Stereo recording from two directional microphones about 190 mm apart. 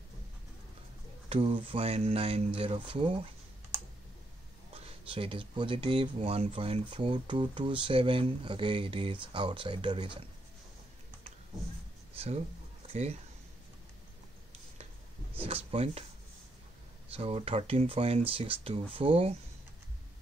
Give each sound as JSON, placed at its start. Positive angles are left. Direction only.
{"t": 1.3, "sound": "speech", "side_deg": -25}
{"t": 4.8, "sound": "speech", "side_deg": -30}
{"t": 12.8, "sound": "speech", "side_deg": -35}
{"t": 15.4, "sound": "a sound", "side_deg": -30}
{"t": 17.1, "sound": "speech", "side_deg": -30}